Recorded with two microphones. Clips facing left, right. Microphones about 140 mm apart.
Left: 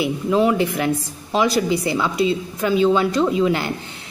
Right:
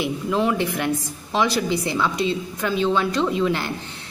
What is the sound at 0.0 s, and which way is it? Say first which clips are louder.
A woman's voice: left 4 dB; 10° left (ahead or behind).